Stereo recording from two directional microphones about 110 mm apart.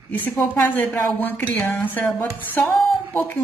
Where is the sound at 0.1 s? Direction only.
15° left (ahead or behind).